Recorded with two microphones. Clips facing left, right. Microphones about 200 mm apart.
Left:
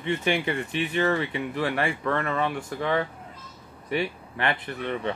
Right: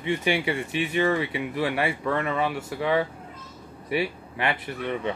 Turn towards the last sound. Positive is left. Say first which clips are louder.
# right 1 dB
turn(degrees=-10)  # may be behind; listen again after turning